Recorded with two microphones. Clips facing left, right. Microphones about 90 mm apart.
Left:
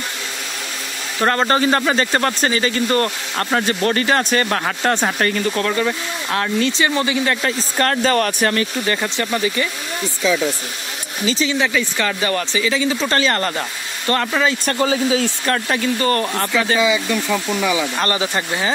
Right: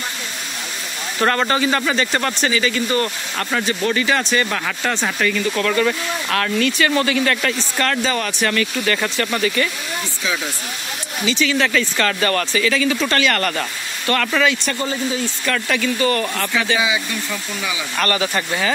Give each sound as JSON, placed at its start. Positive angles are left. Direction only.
{"t": 1.2, "sound": "speech", "side_deg": 20}
{"t": 1.5, "sound": "speech", "side_deg": 35}
{"t": 3.3, "sound": "speech", "side_deg": 30}
{"t": 3.6, "sound": "speech", "side_deg": 50}
{"t": 5.6, "sound": "speech", "side_deg": 20}
{"t": 7.8, "sound": "speech", "side_deg": 40}
{"t": 8.5, "sound": "speech", "side_deg": 30}
{"t": 11.4, "sound": "speech", "side_deg": 15}
{"t": 14.8, "sound": "speech", "side_deg": 90}
{"t": 15.4, "sound": "speech", "side_deg": 30}
{"t": 17.9, "sound": "speech", "side_deg": 20}